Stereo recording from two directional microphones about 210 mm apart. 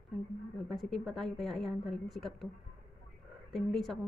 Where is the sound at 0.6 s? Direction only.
Centre (ahead or behind).